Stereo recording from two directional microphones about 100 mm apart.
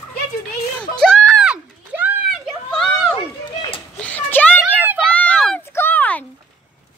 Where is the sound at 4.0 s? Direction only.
15° left (ahead or behind).